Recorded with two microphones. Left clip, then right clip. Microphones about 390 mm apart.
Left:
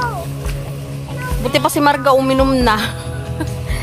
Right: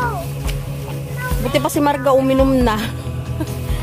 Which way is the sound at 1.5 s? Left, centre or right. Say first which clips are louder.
Left 3 dB; centre.